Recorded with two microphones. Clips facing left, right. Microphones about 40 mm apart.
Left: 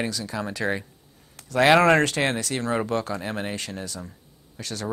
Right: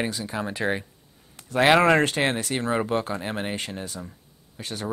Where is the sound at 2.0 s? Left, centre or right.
Right.